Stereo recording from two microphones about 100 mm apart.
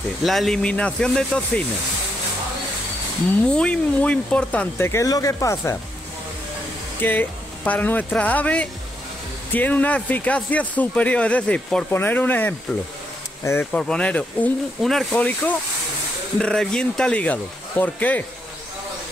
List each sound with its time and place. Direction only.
0.2 s speech: centre (ahead or behind)
3.4 s speech: 10° left (ahead or behind)
4.8 s speech: 35° left (ahead or behind)
7.0 s speech: 20° left (ahead or behind)
13.7 s speech: 10° left (ahead or behind)
14.8 s speech: centre (ahead or behind)
15.1 s speech: 15° left (ahead or behind)